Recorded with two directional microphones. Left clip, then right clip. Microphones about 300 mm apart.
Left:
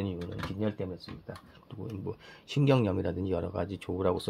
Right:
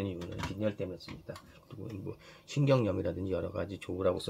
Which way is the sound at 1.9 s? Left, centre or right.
Left.